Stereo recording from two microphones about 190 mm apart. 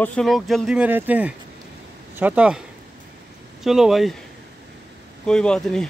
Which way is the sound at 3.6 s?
Centre (ahead or behind).